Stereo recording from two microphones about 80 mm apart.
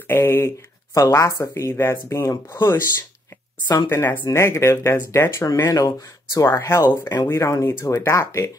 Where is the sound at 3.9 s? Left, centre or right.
Left.